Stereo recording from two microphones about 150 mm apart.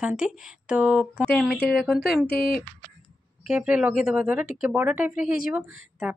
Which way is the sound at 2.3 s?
80° left.